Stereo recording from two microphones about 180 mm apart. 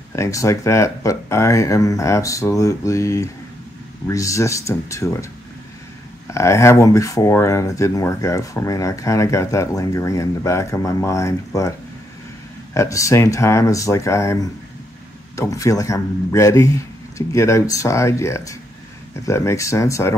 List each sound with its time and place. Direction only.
0.1 s speech: 15° left (ahead or behind)
6.3 s speech: 15° left (ahead or behind)
12.7 s speech: 15° left (ahead or behind)